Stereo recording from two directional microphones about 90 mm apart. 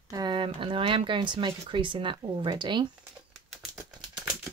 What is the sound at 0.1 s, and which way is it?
Speech, 55° right (ahead or behind).